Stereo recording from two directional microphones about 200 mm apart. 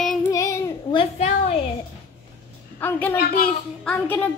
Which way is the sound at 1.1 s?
35° left (ahead or behind).